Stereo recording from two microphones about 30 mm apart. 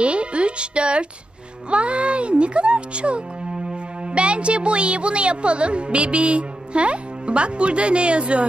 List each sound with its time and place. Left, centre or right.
0.0 s a woman's voice: right